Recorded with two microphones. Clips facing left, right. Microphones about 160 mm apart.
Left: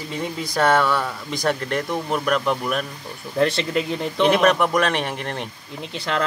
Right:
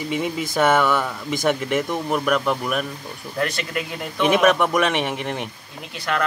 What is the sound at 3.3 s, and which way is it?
Speech, 25° left (ahead or behind).